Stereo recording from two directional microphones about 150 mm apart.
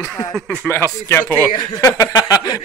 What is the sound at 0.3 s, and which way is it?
Speech, 5° left (ahead or behind).